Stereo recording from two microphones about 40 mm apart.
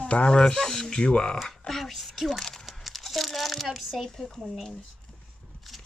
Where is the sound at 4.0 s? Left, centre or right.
Centre.